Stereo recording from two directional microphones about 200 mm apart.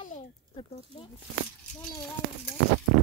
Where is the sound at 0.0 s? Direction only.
40° left (ahead or behind).